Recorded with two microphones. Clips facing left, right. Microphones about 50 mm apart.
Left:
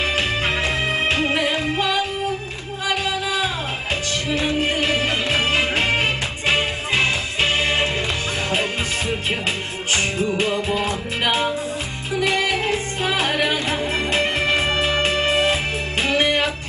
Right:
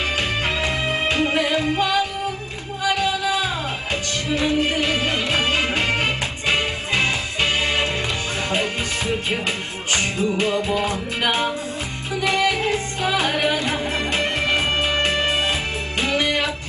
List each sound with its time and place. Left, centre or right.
0.5 s music: left